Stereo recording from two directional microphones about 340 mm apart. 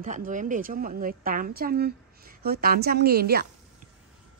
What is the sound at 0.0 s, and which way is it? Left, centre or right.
A woman's voice, right.